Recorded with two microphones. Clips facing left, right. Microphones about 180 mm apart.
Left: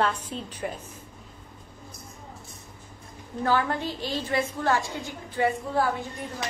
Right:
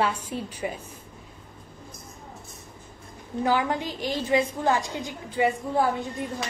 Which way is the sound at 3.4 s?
15° right (ahead or behind).